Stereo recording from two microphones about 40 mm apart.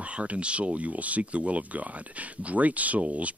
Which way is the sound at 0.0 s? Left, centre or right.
Right.